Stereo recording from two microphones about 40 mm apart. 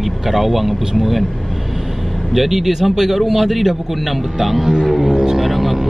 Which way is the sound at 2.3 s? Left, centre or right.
Centre.